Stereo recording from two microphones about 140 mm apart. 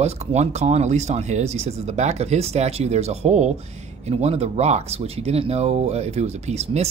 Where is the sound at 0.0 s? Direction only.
50° right (ahead or behind).